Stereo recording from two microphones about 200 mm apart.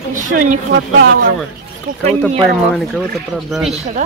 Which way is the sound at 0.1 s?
40° right (ahead or behind).